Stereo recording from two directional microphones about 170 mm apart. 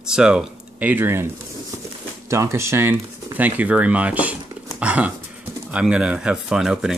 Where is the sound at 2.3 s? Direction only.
15° right (ahead or behind).